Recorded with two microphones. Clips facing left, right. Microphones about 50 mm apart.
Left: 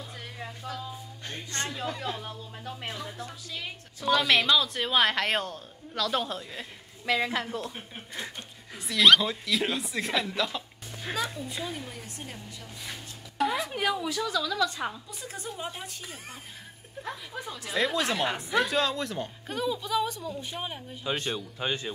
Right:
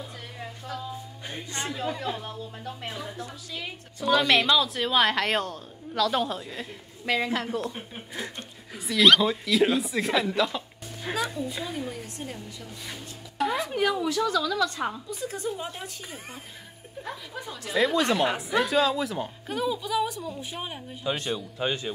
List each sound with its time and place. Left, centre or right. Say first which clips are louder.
1.2 s speech: even; centre
17.5 s speech: right 4 dB; centre